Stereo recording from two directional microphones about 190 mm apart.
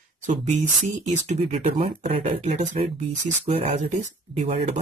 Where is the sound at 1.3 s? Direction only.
35° right (ahead or behind).